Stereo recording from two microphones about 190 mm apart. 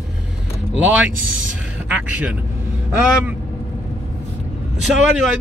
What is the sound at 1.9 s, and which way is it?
Speech, 5° right (ahead or behind).